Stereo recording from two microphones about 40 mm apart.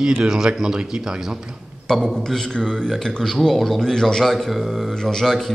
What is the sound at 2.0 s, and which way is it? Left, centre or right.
Speech, centre.